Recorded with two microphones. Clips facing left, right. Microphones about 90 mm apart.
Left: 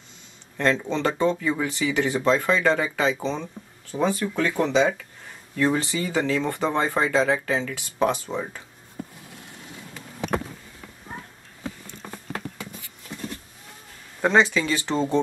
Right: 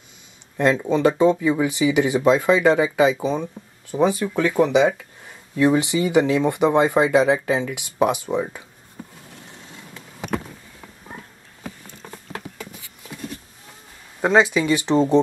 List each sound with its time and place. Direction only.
0.6 s speech: 15° right (ahead or behind)
14.2 s speech: 10° right (ahead or behind)